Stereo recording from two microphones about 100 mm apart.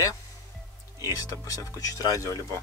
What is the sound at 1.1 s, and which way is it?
Speech, 35° left (ahead or behind).